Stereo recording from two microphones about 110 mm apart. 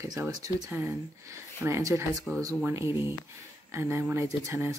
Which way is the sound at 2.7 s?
25° right (ahead or behind).